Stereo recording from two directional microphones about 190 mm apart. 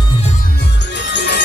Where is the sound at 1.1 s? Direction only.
60° left (ahead or behind).